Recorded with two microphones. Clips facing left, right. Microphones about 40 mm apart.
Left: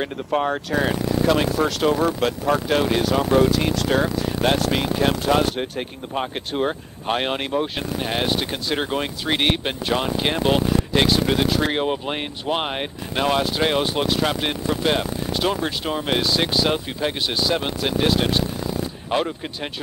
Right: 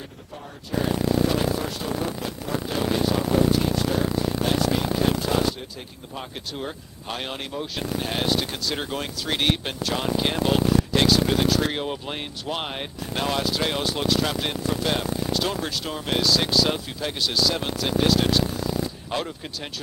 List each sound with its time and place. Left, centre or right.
0.0 s speech: left
4.5 s speech: left